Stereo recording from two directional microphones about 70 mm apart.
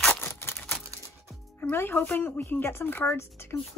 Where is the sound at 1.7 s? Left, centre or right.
Left.